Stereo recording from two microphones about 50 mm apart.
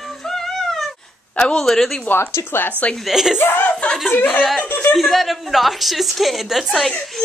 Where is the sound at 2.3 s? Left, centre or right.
Left.